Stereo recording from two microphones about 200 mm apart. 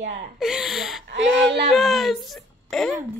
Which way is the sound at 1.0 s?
60° right (ahead or behind).